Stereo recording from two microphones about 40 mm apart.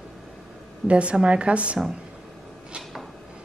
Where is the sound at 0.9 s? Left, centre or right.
Right.